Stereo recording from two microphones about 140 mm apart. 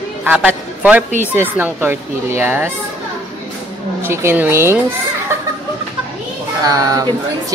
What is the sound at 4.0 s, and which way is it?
Speech, 15° right (ahead or behind).